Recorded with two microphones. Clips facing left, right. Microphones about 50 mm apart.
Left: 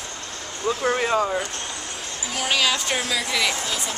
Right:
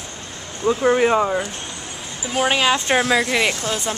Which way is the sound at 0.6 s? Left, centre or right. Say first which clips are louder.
Right 6 dB; centre.